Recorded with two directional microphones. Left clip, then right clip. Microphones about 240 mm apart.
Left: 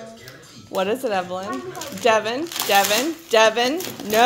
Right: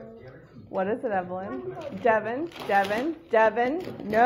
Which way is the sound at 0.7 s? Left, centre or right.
Centre.